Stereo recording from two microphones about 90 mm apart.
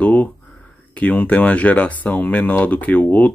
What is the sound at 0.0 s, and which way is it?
Speech, 15° left (ahead or behind).